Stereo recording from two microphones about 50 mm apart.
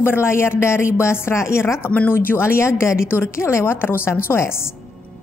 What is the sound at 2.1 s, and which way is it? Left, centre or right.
A woman's voice, left.